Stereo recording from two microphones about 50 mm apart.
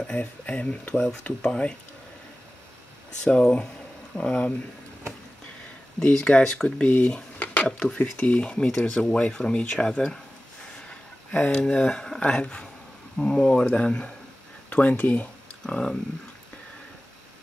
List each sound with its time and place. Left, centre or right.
0.2 s speech: left
3.3 s speech: left
6.1 s speech: centre
7.3 s a sound: left
7.6 s speech: centre
11.3 s speech: left
14.7 s speech: left
15.6 s speech: centre